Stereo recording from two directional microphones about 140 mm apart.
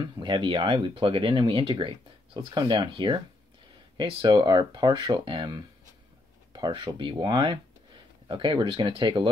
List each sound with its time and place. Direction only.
0.0 s speech: 35° right (ahead or behind)